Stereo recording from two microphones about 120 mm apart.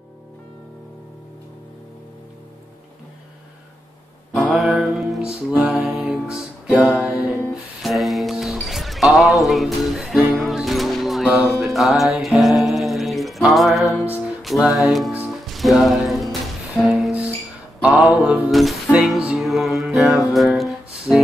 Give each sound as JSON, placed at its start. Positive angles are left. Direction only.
{"t": 4.5, "sound": "music", "side_deg": 0}
{"t": 6.9, "sound": "music", "side_deg": 15}
{"t": 7.8, "sound": "music", "side_deg": 0}